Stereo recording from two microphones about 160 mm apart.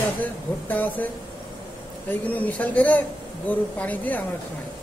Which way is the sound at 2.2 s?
10° left (ahead or behind).